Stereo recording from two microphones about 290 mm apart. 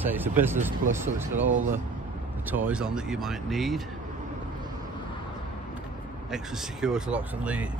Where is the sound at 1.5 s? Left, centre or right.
Right.